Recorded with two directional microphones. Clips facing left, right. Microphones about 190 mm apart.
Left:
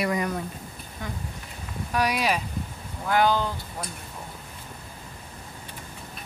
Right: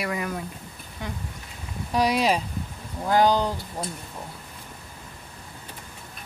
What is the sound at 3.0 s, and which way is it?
Speech, 35° right (ahead or behind).